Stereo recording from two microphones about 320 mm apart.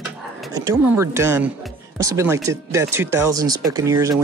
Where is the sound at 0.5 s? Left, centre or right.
Centre.